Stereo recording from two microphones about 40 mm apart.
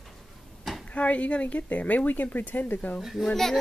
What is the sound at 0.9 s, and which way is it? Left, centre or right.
Speech, left.